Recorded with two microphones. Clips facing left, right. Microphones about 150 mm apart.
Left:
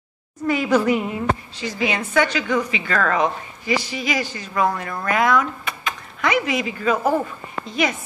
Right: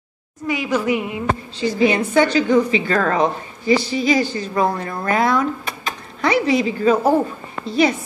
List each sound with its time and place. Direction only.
0.8 s speech: 15° right (ahead or behind)
1.6 s a woman's voice: 30° right (ahead or behind)